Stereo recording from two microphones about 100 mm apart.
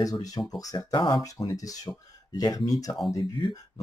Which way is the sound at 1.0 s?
50° left (ahead or behind).